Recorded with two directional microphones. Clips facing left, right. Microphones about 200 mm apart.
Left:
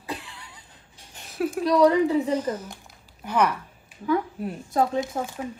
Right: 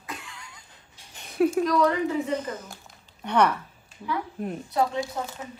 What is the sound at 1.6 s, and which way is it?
Speech, 35° left (ahead or behind).